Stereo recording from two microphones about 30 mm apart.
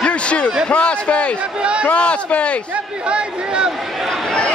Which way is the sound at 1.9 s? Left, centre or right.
Left.